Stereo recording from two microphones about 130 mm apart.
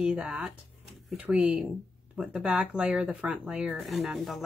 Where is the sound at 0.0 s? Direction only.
5° right (ahead or behind).